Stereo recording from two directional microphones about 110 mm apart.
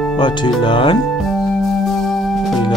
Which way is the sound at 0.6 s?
50° left (ahead or behind).